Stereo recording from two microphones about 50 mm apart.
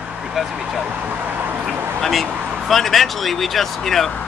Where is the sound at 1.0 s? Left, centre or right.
Right.